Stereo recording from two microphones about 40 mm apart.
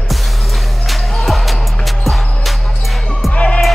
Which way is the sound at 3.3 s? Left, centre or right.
Left.